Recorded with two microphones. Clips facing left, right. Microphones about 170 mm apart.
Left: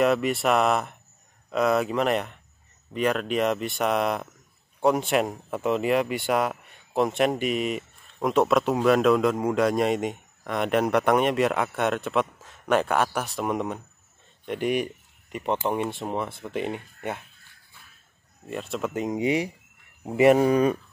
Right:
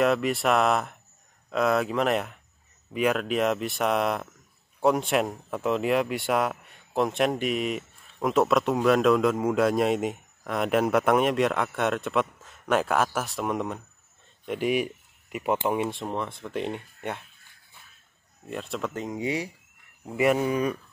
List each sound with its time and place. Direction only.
0.0 s speech: centre (ahead or behind)
18.5 s speech: centre (ahead or behind)
18.9 s speech: 20° left (ahead or behind)
20.3 s speech: 40° left (ahead or behind)